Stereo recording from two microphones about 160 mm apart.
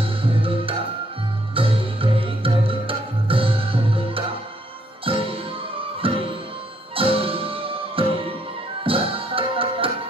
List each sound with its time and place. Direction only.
0.0 s music: 35° right (ahead or behind)